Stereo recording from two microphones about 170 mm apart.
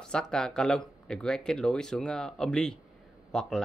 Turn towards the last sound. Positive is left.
turn(degrees=5)  # may be behind; listen again after turning